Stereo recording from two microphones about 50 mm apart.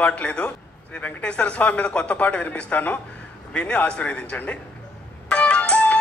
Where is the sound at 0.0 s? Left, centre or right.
Left.